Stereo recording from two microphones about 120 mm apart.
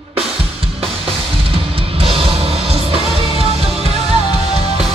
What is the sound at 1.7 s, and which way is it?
Music, 55° right (ahead or behind).